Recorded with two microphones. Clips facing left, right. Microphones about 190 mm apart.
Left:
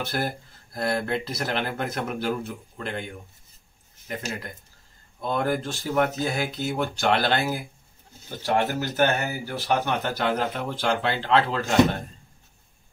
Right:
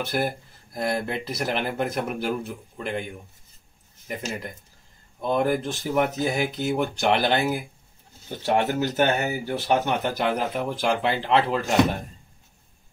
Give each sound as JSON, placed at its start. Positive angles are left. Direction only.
{"t": 0.0, "sound": "speech", "side_deg": -10}
{"t": 5.2, "sound": "speech", "side_deg": -15}